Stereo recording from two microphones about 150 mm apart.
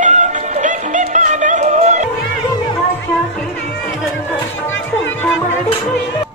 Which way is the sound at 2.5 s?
30° left (ahead or behind).